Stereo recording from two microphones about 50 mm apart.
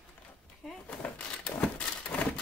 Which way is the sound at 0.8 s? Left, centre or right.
Left.